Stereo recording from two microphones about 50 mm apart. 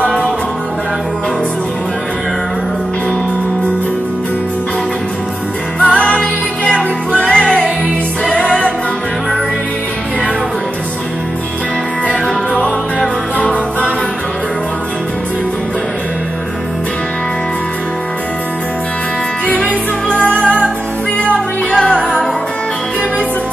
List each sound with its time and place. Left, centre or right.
5.8 s music: left
12.1 s music: left
19.4 s music: left